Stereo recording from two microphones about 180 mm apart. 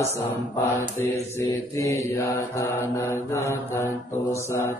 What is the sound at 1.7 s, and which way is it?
Mantra, 15° left (ahead or behind).